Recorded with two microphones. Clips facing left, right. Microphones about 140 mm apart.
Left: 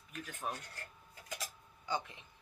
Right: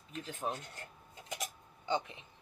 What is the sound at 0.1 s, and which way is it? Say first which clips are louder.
Speech: right 3 dB; 25° right (ahead or behind).